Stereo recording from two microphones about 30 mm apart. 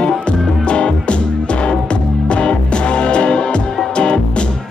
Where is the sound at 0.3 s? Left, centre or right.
Left.